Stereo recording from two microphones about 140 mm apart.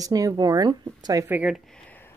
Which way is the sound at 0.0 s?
25° right (ahead or behind).